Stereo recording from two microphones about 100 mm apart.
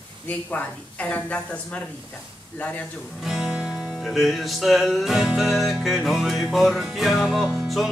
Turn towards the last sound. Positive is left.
turn(degrees=0)  # may be behind; listen again after turning